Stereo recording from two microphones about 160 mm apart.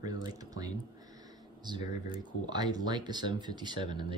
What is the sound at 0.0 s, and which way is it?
Speech, 25° right (ahead or behind).